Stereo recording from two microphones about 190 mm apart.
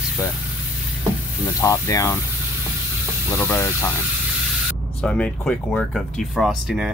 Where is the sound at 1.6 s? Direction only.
15° left (ahead or behind).